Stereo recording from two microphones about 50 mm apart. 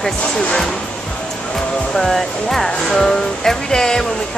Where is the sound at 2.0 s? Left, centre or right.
Centre.